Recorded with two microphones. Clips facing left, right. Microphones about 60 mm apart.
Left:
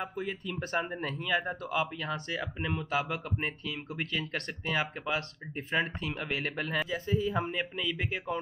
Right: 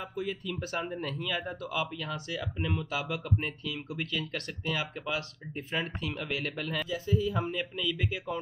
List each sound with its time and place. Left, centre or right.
0.1 s speech: left